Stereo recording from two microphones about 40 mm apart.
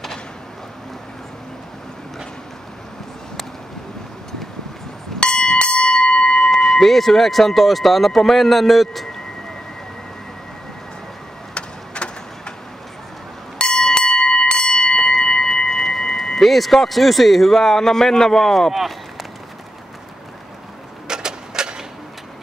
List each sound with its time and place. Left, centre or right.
5.2 s bell: left
6.6 s speech: centre
11.5 s a sound: left
13.6 s bell: centre
18.7 s speech: centre
21.1 s mechanisms: centre